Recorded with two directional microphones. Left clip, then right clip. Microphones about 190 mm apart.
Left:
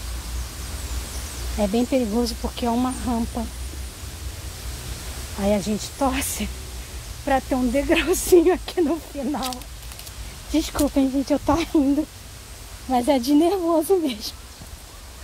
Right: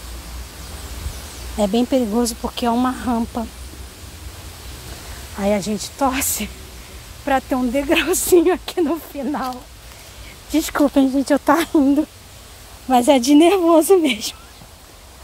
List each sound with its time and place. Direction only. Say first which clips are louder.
1.6 s speech: right 4 dB; 30° right (ahead or behind)
5.4 s speech: right 3 dB; 20° right (ahead or behind)